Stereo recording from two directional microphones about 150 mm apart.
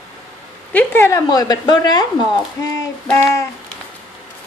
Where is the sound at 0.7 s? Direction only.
15° left (ahead or behind).